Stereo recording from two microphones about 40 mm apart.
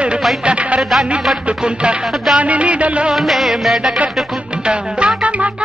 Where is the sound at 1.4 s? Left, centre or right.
Right.